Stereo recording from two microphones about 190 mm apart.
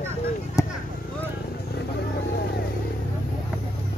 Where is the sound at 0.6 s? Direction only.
15° left (ahead or behind).